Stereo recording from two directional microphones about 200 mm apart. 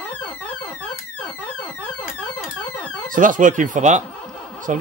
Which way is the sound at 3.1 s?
40° right (ahead or behind).